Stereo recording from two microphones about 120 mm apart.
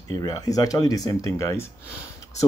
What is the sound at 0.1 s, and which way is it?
Speech, 30° left (ahead or behind).